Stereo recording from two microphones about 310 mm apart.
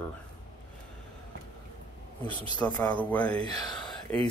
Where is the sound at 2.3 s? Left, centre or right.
Centre.